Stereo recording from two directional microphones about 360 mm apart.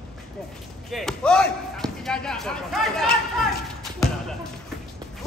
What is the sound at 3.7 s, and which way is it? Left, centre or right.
Music, centre.